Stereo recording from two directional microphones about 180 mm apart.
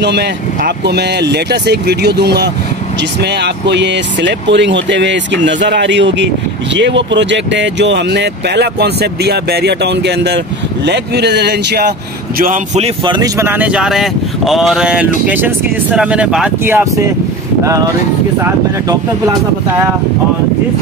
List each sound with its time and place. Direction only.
0.0 s speech: 70° right (ahead or behind)
12.4 s speech: 50° right (ahead or behind)
12.8 s speech: 25° right (ahead or behind)
13.4 s speech: 10° right (ahead or behind)
18.4 s speech: 20° right (ahead or behind)